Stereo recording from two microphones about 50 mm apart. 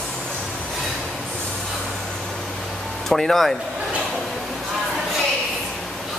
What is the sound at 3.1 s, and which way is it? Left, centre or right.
Speech, centre.